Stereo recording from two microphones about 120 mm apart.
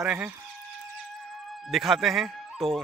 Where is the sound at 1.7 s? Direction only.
Centre (ahead or behind).